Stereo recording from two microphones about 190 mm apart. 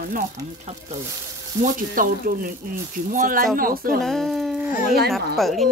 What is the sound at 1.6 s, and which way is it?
Speech, 45° right (ahead or behind).